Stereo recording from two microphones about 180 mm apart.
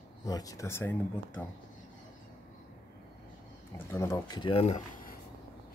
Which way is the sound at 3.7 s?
15° left (ahead or behind).